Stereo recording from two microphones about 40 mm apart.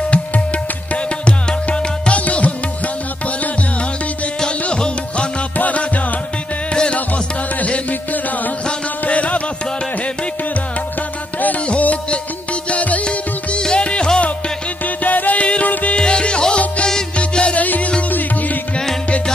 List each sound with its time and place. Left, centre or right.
1.2 s music: left
4.6 s music: left
5.6 s music: left
6.7 s music: left
7.6 s music: left
11.8 s music: left
13.0 s music: left
15.0 s music: left
16.0 s music: left
17.6 s music: left